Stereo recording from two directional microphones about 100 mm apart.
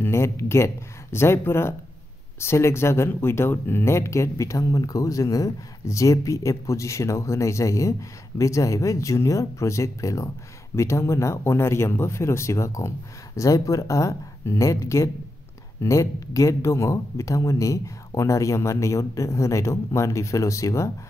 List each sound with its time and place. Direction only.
0.0 s speech: 25° left (ahead or behind)